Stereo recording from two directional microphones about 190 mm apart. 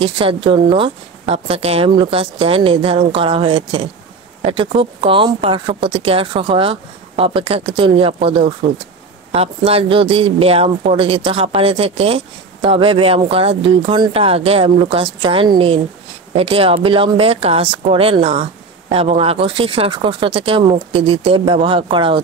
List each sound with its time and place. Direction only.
0.0 s speech: 30° right (ahead or behind)